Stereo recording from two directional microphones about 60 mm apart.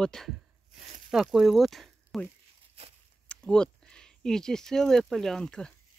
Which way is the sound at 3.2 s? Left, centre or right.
Centre.